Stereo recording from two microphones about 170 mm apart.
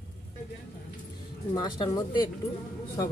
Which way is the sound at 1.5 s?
25° left (ahead or behind).